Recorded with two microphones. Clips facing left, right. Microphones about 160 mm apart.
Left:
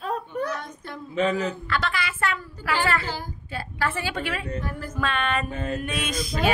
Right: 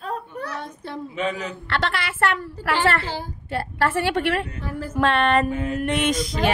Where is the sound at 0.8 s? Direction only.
30° right (ahead or behind).